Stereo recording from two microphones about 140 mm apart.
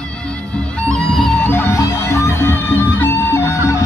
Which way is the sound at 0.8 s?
5° left (ahead or behind).